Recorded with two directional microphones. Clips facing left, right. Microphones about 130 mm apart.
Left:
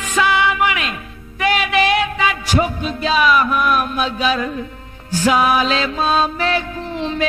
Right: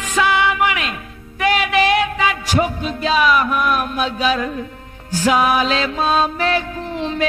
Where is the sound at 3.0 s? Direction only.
45° right (ahead or behind).